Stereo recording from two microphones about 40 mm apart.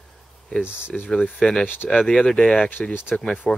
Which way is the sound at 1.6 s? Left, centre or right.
Left.